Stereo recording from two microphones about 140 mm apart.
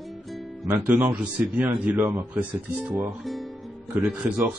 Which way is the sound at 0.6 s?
15° right (ahead or behind).